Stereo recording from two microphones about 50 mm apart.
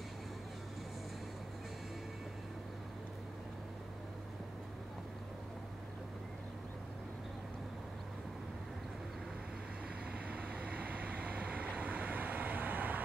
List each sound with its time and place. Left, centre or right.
10.1 s vehicle: right